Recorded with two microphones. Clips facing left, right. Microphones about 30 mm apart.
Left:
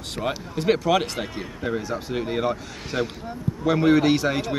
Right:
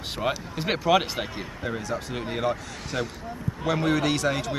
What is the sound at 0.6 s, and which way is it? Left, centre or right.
Speech, centre.